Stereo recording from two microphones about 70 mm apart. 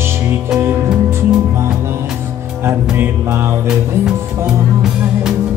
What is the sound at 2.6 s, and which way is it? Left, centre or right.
Music, right.